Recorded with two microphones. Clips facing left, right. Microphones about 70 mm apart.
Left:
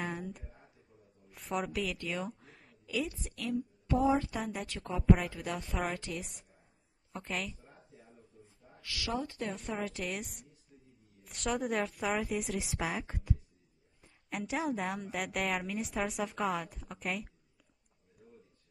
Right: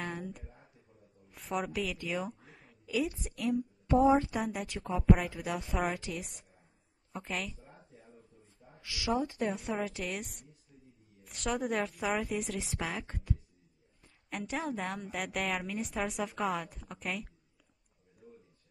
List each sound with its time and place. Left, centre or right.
0.0 s a sound: centre
3.1 s a woman's voice: centre
3.9 s speech: right
4.3 s a woman's voice: centre
8.8 s a woman's voice: centre
9.5 s a woman's voice: centre
14.3 s a woman's voice: centre